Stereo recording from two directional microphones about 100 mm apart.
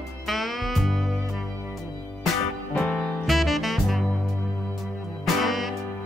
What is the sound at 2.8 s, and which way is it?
Music, 20° left (ahead or behind).